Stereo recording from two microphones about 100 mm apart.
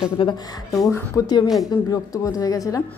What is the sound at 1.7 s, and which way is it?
Speech, 35° left (ahead or behind).